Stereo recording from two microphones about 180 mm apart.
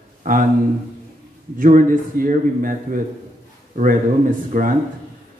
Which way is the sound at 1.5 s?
50° right (ahead or behind).